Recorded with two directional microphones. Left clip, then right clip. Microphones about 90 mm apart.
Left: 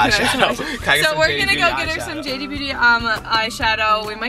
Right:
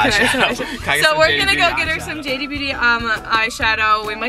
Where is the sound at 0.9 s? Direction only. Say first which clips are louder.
Right 5 dB; 20° right (ahead or behind).